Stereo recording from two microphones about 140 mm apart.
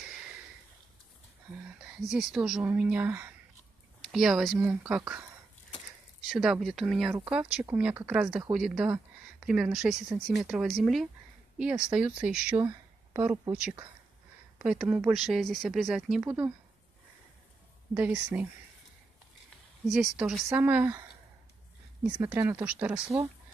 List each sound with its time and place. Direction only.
1.8 s speech: centre (ahead or behind)
6.3 s speech: 5° right (ahead or behind)
12.5 s a sound: 20° right (ahead or behind)
13.5 s speech: 10° right (ahead or behind)
17.9 s speech: 10° right (ahead or behind)
19.9 s speech: 5° right (ahead or behind)
20.4 s speech: 15° right (ahead or behind)
22.2 s speech: 15° right (ahead or behind)